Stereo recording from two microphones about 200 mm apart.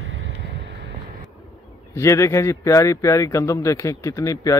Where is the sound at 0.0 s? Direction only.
70° right (ahead or behind).